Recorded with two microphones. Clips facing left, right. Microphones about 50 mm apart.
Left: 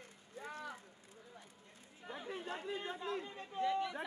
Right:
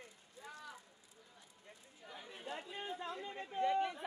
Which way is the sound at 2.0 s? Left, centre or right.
Left.